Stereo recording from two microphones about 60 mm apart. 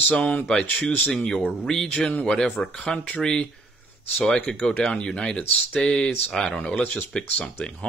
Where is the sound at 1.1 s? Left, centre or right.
Centre.